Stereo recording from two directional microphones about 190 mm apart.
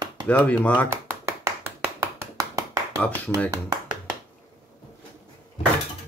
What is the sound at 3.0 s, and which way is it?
Speech, 5° left (ahead or behind).